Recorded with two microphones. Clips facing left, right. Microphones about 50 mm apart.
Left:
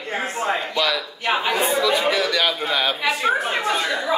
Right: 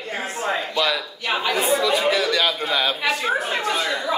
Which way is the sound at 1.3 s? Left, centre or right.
Centre.